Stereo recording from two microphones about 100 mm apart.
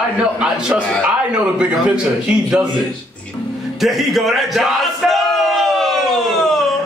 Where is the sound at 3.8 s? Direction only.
Centre (ahead or behind).